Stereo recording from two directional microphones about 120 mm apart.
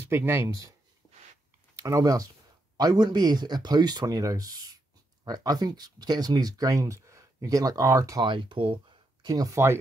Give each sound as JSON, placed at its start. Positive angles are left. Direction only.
{"t": 0.1, "sound": "speech", "side_deg": -20}
{"t": 1.8, "sound": "speech", "side_deg": -25}
{"t": 8.2, "sound": "speech", "side_deg": -40}